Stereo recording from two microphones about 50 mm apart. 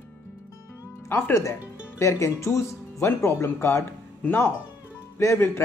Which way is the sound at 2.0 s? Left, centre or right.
Left.